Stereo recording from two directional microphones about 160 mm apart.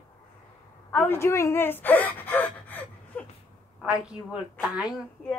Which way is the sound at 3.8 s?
5° right (ahead or behind).